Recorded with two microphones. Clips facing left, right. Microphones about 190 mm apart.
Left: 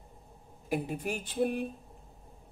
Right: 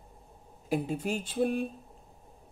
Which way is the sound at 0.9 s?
15° left (ahead or behind).